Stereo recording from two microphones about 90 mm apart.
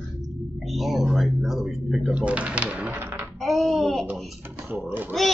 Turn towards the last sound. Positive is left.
turn(degrees=-20)  # may be behind; listen again after turning